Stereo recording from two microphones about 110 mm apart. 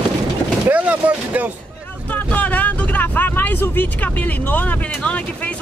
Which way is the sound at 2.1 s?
15° left (ahead or behind).